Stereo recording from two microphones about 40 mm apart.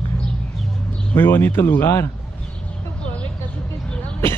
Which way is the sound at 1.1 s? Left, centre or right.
Left.